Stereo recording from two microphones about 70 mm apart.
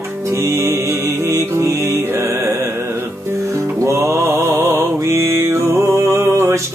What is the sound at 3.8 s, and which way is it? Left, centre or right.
Mantra, right.